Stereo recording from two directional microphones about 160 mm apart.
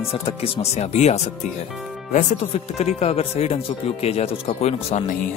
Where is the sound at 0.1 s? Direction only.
35° left (ahead or behind).